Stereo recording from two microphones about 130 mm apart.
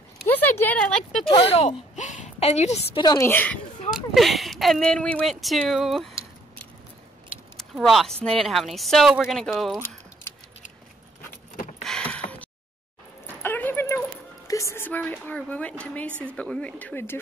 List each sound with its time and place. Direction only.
0.3 s speech: 15° left (ahead or behind)
1.3 s speech: 50° left (ahead or behind)
2.0 s a sound: 70° left (ahead or behind)
3.0 s a woman's voice: 30° left (ahead or behind)
3.3 s speech: 15° left (ahead or behind)
3.9 s speech: centre (ahead or behind)
7.7 s speech: centre (ahead or behind)
9.8 s keys jangling: 15° left (ahead or behind)
11.8 s a sound: 5° left (ahead or behind)
13.3 s a sound: 15° left (ahead or behind)
14.5 s a woman's voice: 20° left (ahead or behind)